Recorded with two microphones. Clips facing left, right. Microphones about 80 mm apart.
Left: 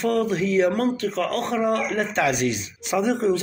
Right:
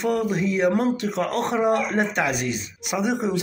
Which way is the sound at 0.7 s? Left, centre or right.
Centre.